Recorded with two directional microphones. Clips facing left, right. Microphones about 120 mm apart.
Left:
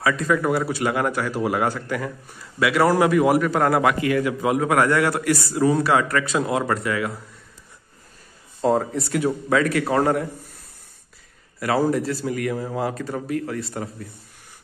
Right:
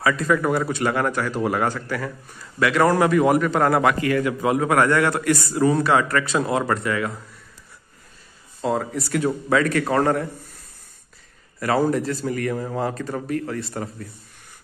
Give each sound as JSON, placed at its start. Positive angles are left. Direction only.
{"t": 0.0, "sound": "a man's voice", "side_deg": 0}
{"t": 8.6, "sound": "speech", "side_deg": 30}
{"t": 9.3, "sound": "speech", "side_deg": 0}
{"t": 11.6, "sound": "a man's voice", "side_deg": 5}